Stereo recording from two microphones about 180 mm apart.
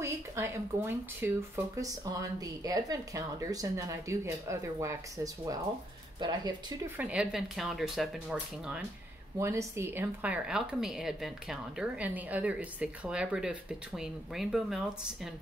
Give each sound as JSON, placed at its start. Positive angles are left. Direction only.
{"t": 0.0, "sound": "speech", "side_deg": -15}
{"t": 7.0, "sound": "speech", "side_deg": -5}
{"t": 9.4, "sound": "speech", "side_deg": -15}